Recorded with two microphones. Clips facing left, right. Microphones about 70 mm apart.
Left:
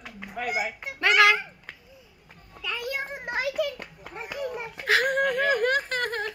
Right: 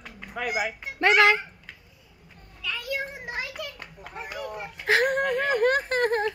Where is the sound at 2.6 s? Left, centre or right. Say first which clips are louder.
Even; left.